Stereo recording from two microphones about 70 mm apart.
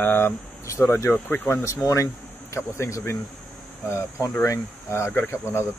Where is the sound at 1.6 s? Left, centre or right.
Left.